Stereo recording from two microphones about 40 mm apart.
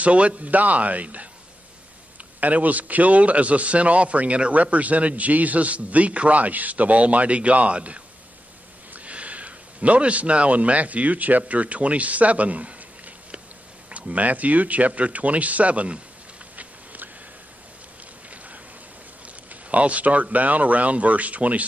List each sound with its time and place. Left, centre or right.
0.0 s a man's voice: right
2.4 s a man's voice: right
16.5 s a sound: right
19.5 s a man's voice: right